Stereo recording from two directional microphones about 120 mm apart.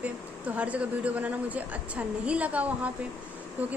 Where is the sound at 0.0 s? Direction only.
10° right (ahead or behind).